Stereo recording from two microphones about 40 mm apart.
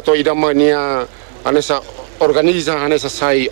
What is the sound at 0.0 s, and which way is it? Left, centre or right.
Speech, centre.